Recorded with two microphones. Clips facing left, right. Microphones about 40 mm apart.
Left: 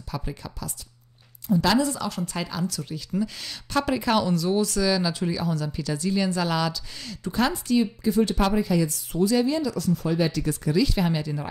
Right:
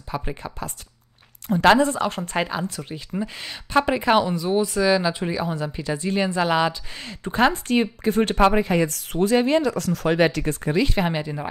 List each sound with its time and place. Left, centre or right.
0.1 s speech: right
9.8 s speech: right